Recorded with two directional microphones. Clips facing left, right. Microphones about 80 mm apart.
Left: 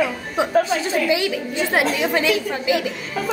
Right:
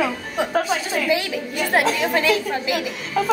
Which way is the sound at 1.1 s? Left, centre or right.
Centre.